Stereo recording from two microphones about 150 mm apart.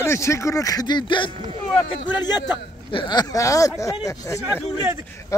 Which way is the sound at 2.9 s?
30° left (ahead or behind).